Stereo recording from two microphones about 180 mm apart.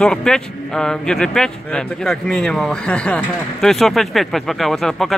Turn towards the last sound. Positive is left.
turn(degrees=0)  # may be behind; listen again after turning